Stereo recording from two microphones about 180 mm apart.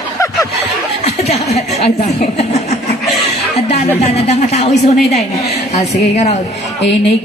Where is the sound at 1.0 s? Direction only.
35° left (ahead or behind).